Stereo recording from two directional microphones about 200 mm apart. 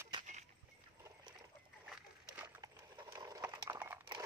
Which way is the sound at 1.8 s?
10° right (ahead or behind).